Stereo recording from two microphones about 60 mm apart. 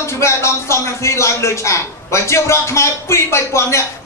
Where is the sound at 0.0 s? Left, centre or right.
Left.